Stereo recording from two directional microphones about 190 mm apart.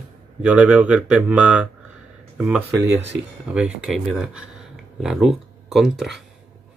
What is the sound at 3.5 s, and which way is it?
Speech, 5° right (ahead or behind).